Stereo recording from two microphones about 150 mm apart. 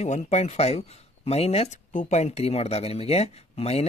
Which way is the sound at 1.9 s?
55° left (ahead or behind).